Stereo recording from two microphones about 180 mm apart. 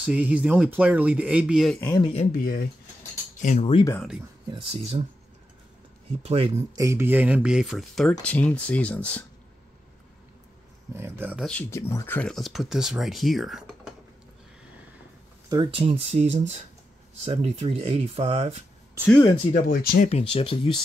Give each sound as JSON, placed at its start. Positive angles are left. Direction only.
{"t": 0.0, "sound": "speech", "side_deg": -5}
{"t": 2.0, "sound": "speech", "side_deg": 25}
{"t": 2.3, "sound": "speech", "side_deg": 55}
{"t": 3.4, "sound": "speech", "side_deg": 35}
{"t": 4.5, "sound": "speech", "side_deg": -30}
{"t": 6.2, "sound": "speech", "side_deg": -35}
{"t": 6.7, "sound": "speech", "side_deg": -15}
{"t": 11.0, "sound": "speech", "side_deg": -10}
{"t": 11.4, "sound": "speech", "side_deg": 10}
{"t": 12.2, "sound": "speech", "side_deg": 0}
{"t": 15.5, "sound": "speech", "side_deg": -30}
{"t": 19.0, "sound": "speech", "side_deg": 10}
{"t": 19.5, "sound": "speech", "side_deg": 55}
{"t": 20.1, "sound": "speech", "side_deg": 35}